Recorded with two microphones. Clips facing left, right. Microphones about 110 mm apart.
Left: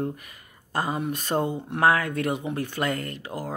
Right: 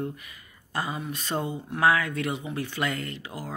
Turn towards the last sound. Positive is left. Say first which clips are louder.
# left 3 dB
turn(degrees=45)  # may be behind; listen again after turning